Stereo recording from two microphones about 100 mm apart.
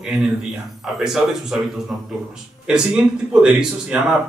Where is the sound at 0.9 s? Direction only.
5° right (ahead or behind).